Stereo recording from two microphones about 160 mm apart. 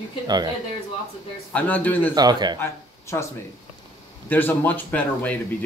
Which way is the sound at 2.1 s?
25° right (ahead or behind).